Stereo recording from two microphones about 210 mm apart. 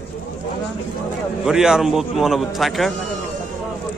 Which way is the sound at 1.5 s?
5° right (ahead or behind).